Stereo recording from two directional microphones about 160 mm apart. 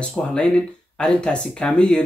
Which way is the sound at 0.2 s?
5° left (ahead or behind).